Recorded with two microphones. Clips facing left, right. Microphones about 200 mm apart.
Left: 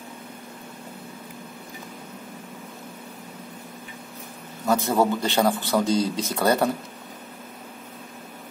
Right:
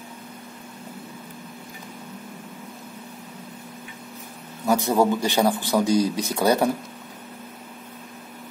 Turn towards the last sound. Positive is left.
turn(degrees=-15)  # may be behind; listen again after turning